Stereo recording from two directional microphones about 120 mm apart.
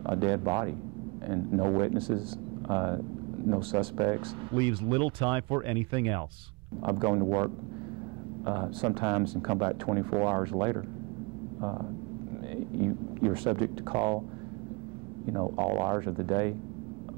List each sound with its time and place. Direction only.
0.0 s a man's voice: 40° right (ahead or behind)
15.2 s speech: 35° right (ahead or behind)